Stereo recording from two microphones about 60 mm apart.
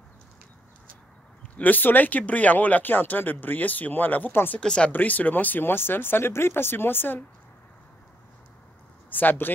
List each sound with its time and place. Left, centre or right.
1.6 s speech: left
4.6 s speech: centre
4.9 s speech: left
9.1 s speech: left